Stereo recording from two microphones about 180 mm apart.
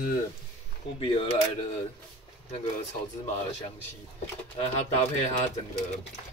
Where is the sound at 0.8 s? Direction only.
30° left (ahead or behind).